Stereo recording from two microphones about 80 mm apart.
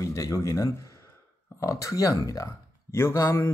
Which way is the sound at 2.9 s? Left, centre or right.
Left.